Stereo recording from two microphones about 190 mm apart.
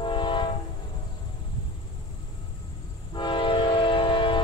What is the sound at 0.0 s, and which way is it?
Train, 25° left (ahead or behind).